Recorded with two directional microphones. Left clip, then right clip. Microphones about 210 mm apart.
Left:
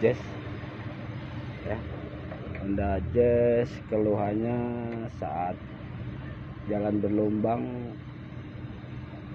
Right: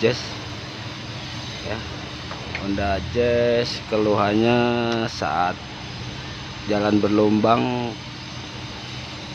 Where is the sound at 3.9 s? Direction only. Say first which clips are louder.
Right 7 dB; 35° right (ahead or behind).